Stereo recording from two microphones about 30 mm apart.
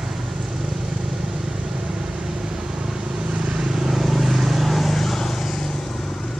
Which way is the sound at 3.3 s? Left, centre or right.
Right.